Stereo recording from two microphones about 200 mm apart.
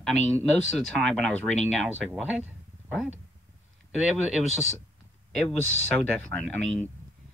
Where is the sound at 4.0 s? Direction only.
Centre (ahead or behind).